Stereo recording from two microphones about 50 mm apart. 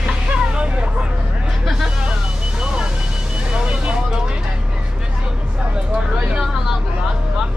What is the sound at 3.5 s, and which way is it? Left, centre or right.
Vehicle, right.